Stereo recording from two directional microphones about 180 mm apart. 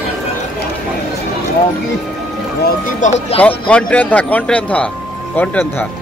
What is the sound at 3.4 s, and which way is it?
Speech, 5° left (ahead or behind).